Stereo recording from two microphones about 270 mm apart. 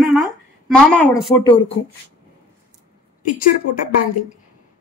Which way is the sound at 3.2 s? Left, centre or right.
Left.